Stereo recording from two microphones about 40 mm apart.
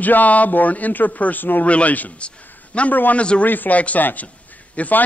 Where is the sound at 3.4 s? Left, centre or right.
Left.